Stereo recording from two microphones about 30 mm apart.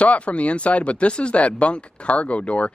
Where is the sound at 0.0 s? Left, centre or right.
Left.